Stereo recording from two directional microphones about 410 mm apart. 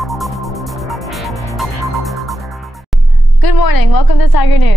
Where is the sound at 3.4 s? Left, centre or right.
Left.